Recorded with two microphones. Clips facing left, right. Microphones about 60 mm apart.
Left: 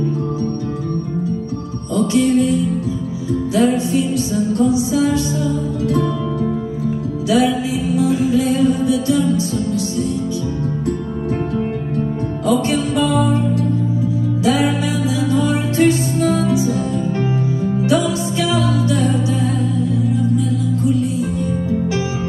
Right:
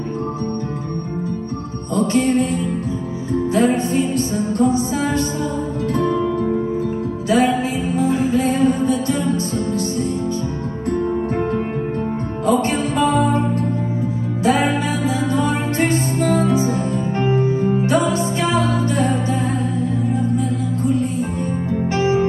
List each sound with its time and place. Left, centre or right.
2.0 s music: right
7.2 s music: right
12.4 s music: right
14.4 s music: right